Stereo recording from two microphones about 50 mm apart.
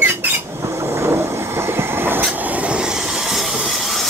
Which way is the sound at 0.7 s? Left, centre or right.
Right.